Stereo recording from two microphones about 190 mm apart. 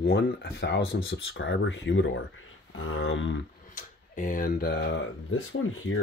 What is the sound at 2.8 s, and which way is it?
Speech, 90° left.